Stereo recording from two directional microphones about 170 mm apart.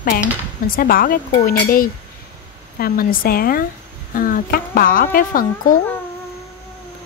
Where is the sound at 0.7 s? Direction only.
55° left (ahead or behind).